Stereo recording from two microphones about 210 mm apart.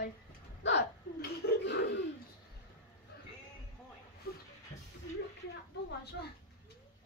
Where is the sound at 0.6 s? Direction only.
50° left (ahead or behind).